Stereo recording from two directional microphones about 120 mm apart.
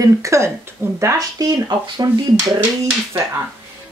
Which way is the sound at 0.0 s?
25° right (ahead or behind).